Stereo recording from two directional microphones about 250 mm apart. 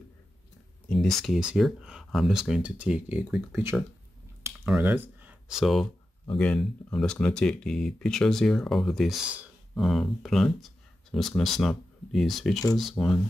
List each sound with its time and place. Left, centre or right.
0.8 s speech: centre